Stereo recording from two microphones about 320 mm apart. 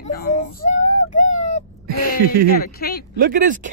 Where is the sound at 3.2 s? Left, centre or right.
Right.